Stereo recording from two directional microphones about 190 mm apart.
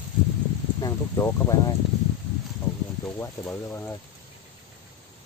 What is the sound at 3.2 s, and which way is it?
Speech, 15° left (ahead or behind).